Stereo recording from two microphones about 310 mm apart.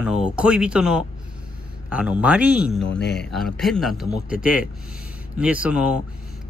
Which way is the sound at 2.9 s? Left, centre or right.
Left.